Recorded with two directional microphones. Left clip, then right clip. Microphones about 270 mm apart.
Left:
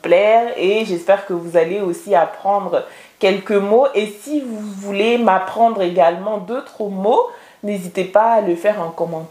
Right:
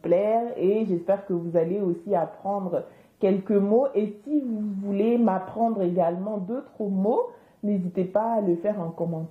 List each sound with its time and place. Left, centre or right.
0.0 s speech: centre
2.7 s speech: centre
6.8 s speech: left
7.6 s speech: centre; by 9.2 s left